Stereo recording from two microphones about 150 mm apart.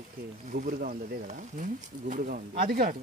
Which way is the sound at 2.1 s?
70° right (ahead or behind).